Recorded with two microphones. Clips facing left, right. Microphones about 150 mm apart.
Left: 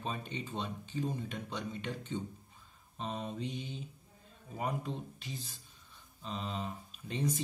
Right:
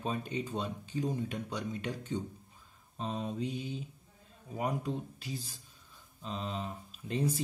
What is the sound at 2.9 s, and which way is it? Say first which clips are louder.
Speech: right 3 dB; centre (ahead or behind).